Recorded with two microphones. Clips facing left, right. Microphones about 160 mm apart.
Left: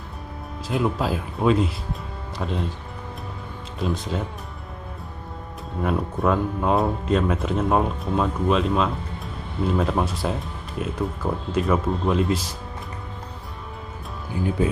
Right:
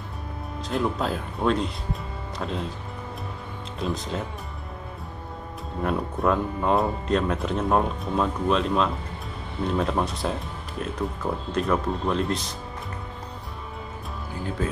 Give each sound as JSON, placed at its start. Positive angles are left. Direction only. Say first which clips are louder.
{"t": 0.7, "sound": "speech", "louder": "left 2 dB", "side_deg": 5}
{"t": 3.8, "sound": "speech", "louder": "left 2 dB", "side_deg": 0}
{"t": 5.8, "sound": "speech", "louder": "left 2 dB", "side_deg": 0}